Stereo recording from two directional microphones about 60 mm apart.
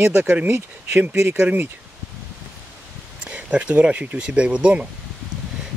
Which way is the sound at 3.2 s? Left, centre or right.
Right.